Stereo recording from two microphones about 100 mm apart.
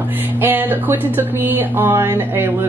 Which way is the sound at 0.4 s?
20° right (ahead or behind).